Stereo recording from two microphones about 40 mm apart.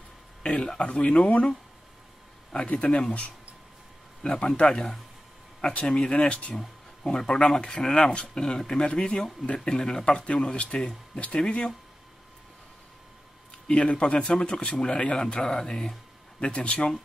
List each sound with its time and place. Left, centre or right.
0.4 s a sound: left
1.0 s speech: left
2.7 s speech: left
4.2 s speech: left
7.0 s speech: centre
9.7 s speech: centre
13.7 s speech: left
14.5 s speech: left